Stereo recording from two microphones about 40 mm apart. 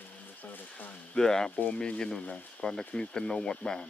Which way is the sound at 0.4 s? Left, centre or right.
Left.